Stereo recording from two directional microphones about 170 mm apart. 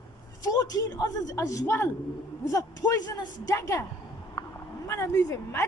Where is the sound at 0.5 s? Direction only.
20° left (ahead or behind).